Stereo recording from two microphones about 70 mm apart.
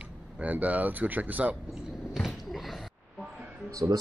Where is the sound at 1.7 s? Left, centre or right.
Centre.